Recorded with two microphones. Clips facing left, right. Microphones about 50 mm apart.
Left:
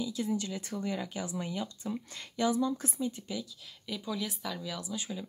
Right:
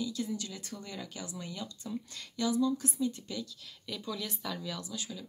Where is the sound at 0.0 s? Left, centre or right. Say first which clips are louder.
Left 3 dB; left.